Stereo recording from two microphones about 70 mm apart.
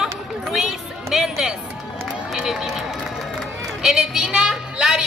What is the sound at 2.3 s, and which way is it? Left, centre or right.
Run, centre.